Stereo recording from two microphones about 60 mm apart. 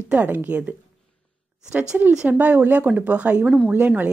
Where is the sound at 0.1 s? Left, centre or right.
Right.